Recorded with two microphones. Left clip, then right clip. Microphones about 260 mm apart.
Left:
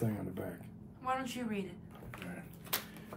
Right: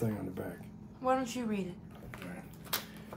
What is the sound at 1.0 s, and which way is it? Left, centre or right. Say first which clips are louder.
Speech: right 5 dB; centre.